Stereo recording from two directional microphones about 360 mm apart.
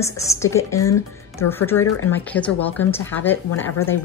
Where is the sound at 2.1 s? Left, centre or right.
Centre.